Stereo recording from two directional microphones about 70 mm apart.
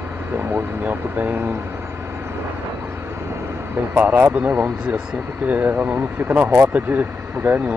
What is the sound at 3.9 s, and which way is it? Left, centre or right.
Speech, right.